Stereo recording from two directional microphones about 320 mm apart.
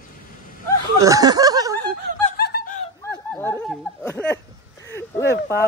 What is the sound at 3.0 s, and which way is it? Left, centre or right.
Speech, centre.